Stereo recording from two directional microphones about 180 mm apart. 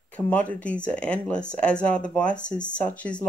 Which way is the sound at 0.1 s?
10° left (ahead or behind).